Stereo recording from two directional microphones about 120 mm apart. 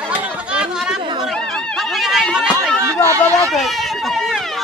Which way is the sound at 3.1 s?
25° right (ahead or behind).